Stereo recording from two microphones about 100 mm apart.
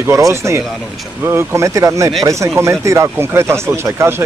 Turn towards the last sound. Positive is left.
turn(degrees=-25)  # may be behind; listen again after turning